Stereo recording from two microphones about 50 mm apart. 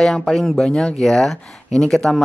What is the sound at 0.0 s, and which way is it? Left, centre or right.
Speech, centre.